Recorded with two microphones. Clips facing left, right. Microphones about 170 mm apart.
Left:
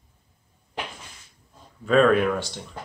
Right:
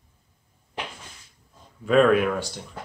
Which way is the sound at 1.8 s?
10° right (ahead or behind).